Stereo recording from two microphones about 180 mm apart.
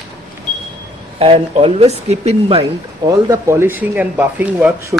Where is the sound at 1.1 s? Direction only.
30° right (ahead or behind).